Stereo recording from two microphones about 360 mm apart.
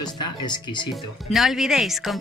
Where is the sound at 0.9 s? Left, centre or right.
Centre.